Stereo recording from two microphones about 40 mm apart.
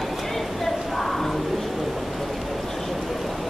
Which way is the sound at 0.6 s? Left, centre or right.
Centre.